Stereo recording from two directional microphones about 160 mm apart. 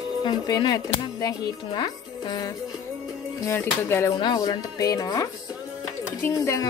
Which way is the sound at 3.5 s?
15° left (ahead or behind).